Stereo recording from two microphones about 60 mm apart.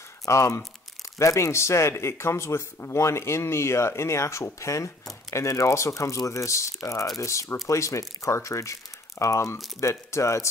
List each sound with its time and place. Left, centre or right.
0.2 s speech: left